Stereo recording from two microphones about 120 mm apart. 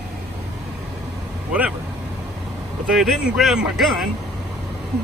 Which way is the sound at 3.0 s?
5° right (ahead or behind).